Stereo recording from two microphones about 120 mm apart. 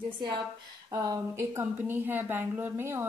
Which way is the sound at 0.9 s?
25° right (ahead or behind).